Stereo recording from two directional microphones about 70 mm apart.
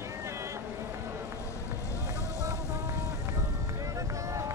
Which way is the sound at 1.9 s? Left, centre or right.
Left.